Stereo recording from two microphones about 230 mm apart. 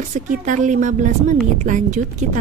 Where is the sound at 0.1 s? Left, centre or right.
Right.